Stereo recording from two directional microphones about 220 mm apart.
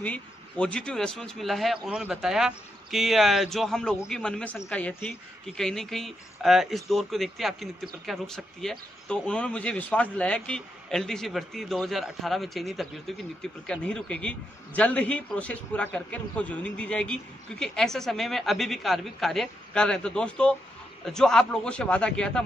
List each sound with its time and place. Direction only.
0.0 s speech: 5° left (ahead or behind)